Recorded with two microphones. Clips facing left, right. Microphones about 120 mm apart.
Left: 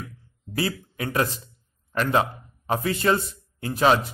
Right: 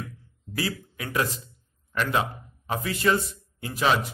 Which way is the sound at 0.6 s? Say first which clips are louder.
Left 3 dB; 30° left (ahead or behind).